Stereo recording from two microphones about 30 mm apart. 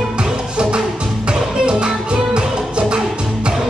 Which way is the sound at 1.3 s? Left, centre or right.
Right.